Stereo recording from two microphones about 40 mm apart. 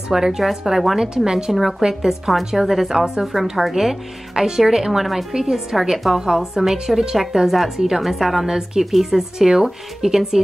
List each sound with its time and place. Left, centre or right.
0.1 s a woman's voice: centre
0.9 s a woman's voice: centre
1.5 s a woman's voice: centre